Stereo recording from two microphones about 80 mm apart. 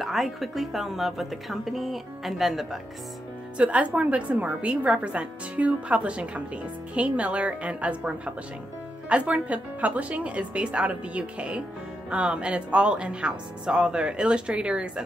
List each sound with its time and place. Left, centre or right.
0.0 s a woman's voice: centre
3.5 s a woman's voice: centre